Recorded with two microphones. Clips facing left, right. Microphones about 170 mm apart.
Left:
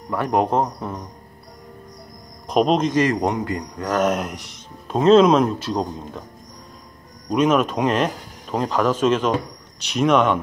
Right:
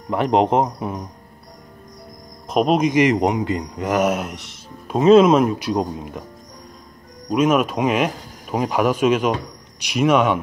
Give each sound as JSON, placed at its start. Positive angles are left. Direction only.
{"t": 0.1, "sound": "speech", "side_deg": -20}
{"t": 2.4, "sound": "speech", "side_deg": -5}
{"t": 7.2, "sound": "speech", "side_deg": -5}